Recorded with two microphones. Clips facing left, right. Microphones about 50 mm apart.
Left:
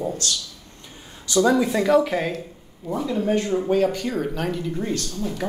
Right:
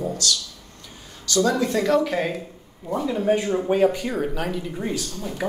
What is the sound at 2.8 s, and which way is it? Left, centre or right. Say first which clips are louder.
Speech: right 1 dB; centre.